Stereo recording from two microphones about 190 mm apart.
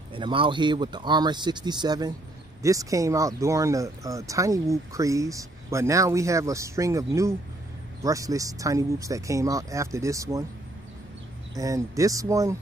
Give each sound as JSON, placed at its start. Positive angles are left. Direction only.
{"t": 0.1, "sound": "speech", "side_deg": -25}
{"t": 11.5, "sound": "speech", "side_deg": -15}